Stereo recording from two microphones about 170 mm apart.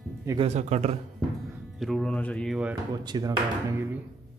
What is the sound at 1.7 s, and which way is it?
Speech, centre (ahead or behind).